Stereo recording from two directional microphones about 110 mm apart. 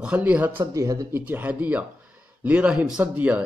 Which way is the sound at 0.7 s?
35° right (ahead or behind).